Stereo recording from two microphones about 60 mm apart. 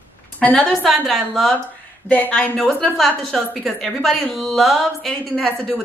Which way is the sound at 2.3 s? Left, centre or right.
Centre.